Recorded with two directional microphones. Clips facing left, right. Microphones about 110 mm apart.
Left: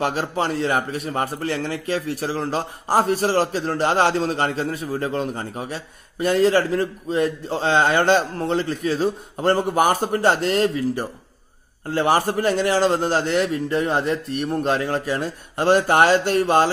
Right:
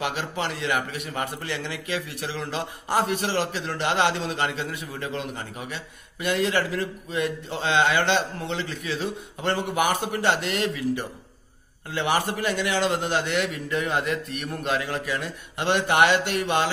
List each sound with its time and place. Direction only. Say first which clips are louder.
0.0 s a man's voice: left 6 dB; 40° left (ahead or behind)